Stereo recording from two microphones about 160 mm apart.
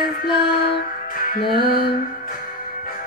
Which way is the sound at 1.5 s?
70° left (ahead or behind).